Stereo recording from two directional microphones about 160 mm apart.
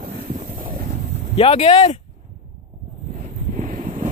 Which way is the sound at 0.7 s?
50° right (ahead or behind).